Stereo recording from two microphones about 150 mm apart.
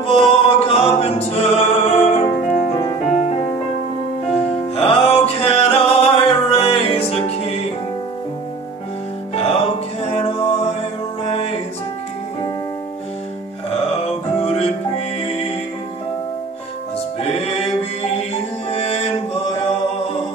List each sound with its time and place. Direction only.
0.0 s music: 40° left (ahead or behind)
3.1 s music: 55° left (ahead or behind)
4.3 s music: 40° left (ahead or behind)
9.3 s music: 40° left (ahead or behind)
14.0 s music: 40° left (ahead or behind)
17.2 s music: 45° left (ahead or behind)
18.7 s chant: 40° left (ahead or behind)